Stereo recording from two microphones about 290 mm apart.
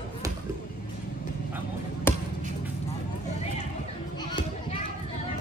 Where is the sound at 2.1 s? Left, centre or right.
Centre.